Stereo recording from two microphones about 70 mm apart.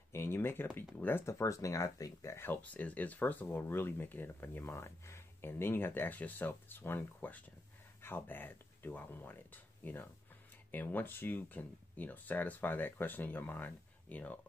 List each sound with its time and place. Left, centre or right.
0.1 s speech: left
1.2 s speech: left
2.3 s speech: left